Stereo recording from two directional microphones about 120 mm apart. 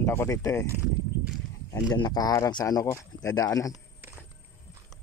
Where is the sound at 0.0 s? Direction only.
20° left (ahead or behind).